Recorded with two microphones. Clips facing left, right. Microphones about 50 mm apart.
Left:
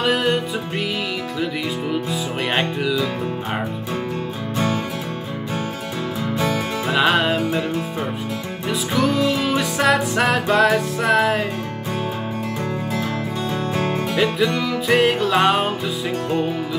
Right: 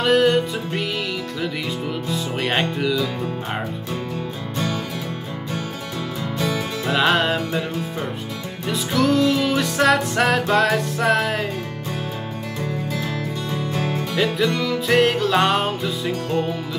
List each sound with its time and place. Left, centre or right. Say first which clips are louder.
0.0 s music: right 3 dB; centre
1.9 s music: left 2 dB; centre
6.3 s music: left 2 dB; left
6.9 s music: left 1 dB; centre
8.6 s music: even; centre
13.9 s music: left 1 dB; centre